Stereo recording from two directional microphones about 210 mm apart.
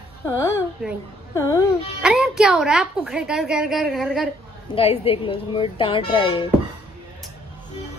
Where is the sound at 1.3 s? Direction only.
15° left (ahead or behind).